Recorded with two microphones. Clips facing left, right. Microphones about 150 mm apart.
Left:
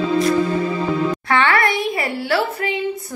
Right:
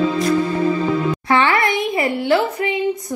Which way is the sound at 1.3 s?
20° right (ahead or behind).